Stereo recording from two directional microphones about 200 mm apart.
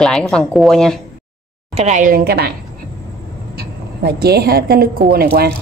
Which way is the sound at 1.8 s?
35° right (ahead or behind).